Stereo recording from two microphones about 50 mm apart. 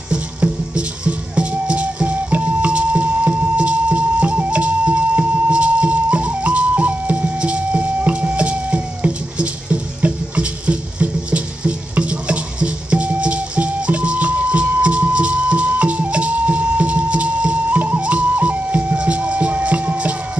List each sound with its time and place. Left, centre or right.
0.1 s music: right